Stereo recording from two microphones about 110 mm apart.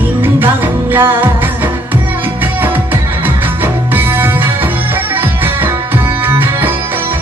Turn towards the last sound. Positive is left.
turn(degrees=-20)  # may be behind; listen again after turning